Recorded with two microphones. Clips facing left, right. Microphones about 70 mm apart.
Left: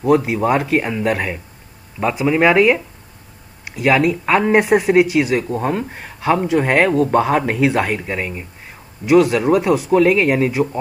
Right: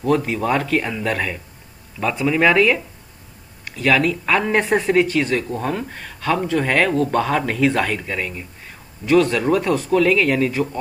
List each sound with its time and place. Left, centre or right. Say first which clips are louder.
0.0 s speech: left 4 dB; centre
2.2 s speech: left 3 dB; left